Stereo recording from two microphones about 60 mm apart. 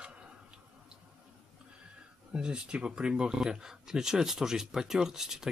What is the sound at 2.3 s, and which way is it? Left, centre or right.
Speech, centre.